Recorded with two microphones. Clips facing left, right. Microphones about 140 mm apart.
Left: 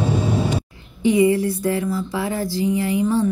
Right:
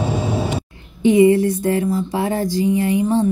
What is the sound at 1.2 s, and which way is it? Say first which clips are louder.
Speech: right 4 dB; 45° right (ahead or behind).